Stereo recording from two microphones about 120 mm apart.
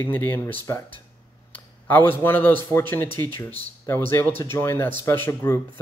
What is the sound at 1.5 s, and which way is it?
Speech, 15° left (ahead or behind).